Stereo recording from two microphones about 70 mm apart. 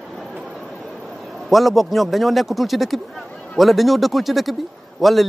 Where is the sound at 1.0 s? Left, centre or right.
Centre.